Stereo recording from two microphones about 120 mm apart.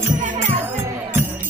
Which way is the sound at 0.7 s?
20° right (ahead or behind).